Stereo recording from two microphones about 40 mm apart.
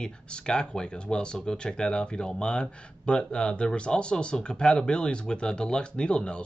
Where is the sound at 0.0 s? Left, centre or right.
Left.